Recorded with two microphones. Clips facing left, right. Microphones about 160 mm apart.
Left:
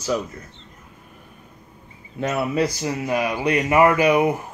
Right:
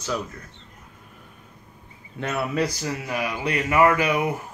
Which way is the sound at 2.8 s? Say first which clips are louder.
Left 5 dB; 20° left (ahead or behind).